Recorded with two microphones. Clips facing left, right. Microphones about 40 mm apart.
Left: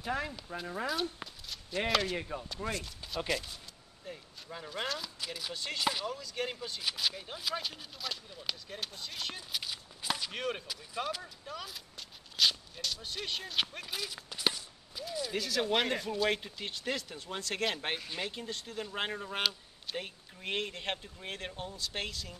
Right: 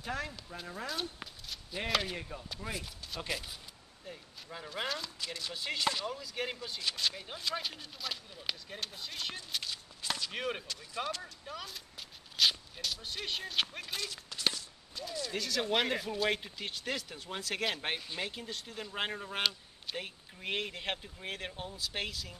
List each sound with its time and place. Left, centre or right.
0.0 s speech: centre
1.2 s a sound: centre
1.9 s speech: centre
2.1 s speech: centre
2.7 s speech: centre
5.5 s speech: centre
6.8 s speech: centre
10.3 s speech: centre